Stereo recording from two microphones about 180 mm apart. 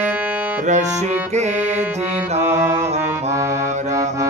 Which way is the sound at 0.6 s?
40° right (ahead or behind).